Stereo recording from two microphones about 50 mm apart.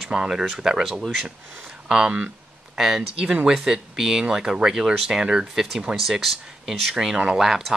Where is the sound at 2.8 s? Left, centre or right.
Centre.